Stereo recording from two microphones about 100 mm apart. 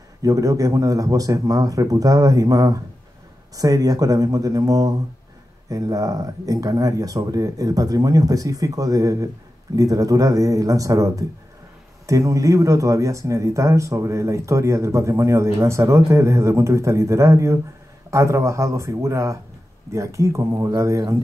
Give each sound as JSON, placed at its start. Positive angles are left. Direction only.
{"t": 0.2, "sound": "speech", "side_deg": -35}